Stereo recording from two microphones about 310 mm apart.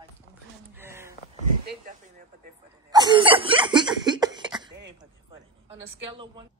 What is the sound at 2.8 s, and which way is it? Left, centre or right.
Cough, centre.